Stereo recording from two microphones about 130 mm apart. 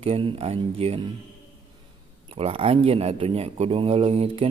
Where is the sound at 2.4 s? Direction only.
45° right (ahead or behind).